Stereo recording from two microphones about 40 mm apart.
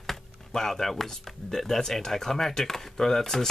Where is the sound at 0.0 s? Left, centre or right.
Centre.